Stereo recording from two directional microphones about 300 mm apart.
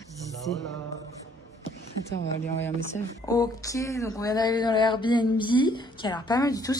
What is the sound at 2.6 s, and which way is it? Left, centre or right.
Speech, centre.